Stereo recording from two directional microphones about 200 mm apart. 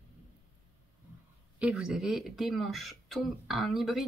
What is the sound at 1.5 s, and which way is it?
Speech, 5° right (ahead or behind).